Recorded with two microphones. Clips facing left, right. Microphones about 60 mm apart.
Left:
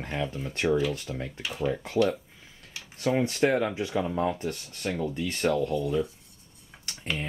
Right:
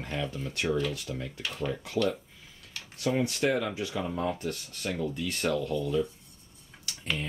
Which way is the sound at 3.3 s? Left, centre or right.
Left.